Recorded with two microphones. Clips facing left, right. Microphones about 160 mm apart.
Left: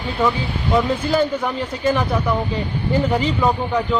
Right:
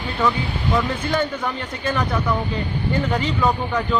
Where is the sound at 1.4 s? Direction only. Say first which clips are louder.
Left 4 dB; 5° left (ahead or behind).